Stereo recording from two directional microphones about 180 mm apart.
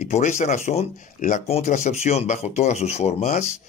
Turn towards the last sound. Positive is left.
turn(degrees=40)  # may be behind; listen again after turning